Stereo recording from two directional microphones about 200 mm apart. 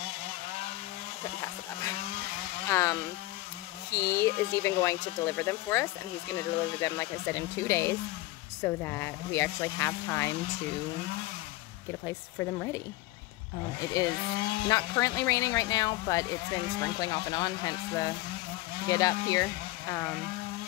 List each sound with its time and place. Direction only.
2.7 s speech: 15° left (ahead or behind)
12.1 s speech: 15° left (ahead or behind)